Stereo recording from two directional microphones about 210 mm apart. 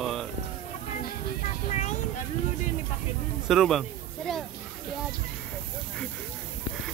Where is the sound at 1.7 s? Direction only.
35° left (ahead or behind).